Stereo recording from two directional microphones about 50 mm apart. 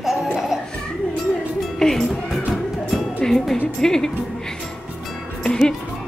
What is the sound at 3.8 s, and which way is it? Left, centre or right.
Speech, centre.